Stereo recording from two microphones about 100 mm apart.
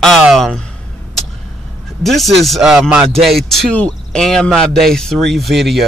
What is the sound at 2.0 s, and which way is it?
Speech, centre (ahead or behind).